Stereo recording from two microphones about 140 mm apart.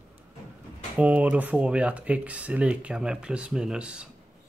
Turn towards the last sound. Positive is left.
turn(degrees=-5)  # may be behind; listen again after turning